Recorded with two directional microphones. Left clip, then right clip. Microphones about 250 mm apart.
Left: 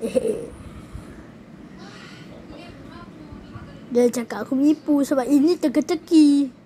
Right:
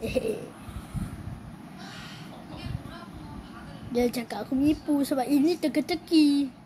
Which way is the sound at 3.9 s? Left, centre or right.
Centre.